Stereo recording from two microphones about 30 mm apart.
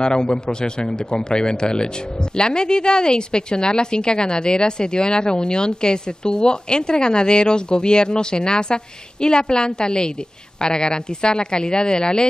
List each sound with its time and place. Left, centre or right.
0.0 s a woman's voice: left